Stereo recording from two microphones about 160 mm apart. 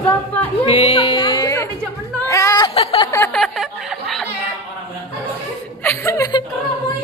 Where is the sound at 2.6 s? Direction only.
30° left (ahead or behind).